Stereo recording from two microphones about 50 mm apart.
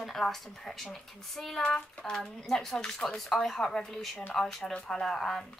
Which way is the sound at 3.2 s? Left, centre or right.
Centre.